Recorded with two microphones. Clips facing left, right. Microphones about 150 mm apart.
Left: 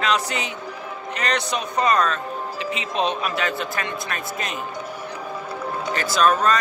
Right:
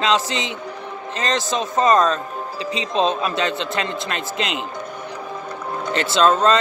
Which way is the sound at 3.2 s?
25° right (ahead or behind).